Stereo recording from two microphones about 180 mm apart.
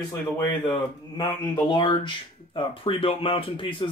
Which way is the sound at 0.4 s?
15° left (ahead or behind).